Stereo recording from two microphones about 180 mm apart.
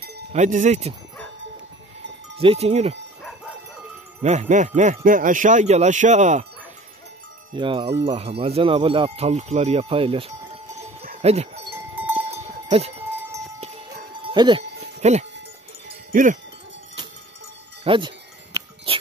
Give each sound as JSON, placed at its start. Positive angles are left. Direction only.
{"t": 0.3, "sound": "speech", "side_deg": -45}
{"t": 2.3, "sound": "speech", "side_deg": -30}
{"t": 4.2, "sound": "speech", "side_deg": -40}
{"t": 7.5, "sound": "wind chime", "side_deg": -30}
{"t": 8.0, "sound": "speech", "side_deg": -30}
{"t": 11.7, "sound": "cowbell", "side_deg": -10}
{"t": 12.6, "sound": "speech", "side_deg": -35}
{"t": 13.6, "sound": "music", "side_deg": -35}
{"t": 15.0, "sound": "speech", "side_deg": -40}
{"t": 16.1, "sound": "wind chime", "side_deg": -45}
{"t": 17.8, "sound": "wind chime", "side_deg": -30}